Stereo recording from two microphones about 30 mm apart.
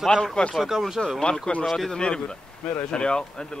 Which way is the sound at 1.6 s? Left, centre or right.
Centre.